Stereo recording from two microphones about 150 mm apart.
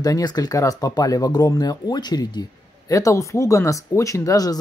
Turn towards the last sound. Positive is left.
turn(degrees=25)  # may be behind; listen again after turning